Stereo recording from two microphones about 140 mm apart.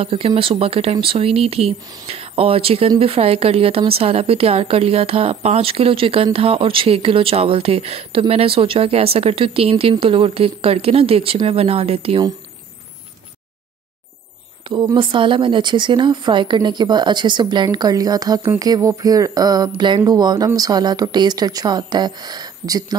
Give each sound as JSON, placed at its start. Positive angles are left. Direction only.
{"t": 0.0, "sound": "a woman's voice", "side_deg": -40}
{"t": 14.7, "sound": "speech", "side_deg": -30}